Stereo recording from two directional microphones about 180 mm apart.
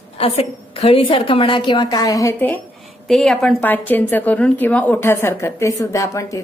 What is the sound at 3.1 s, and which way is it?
A woman's voice, centre (ahead or behind).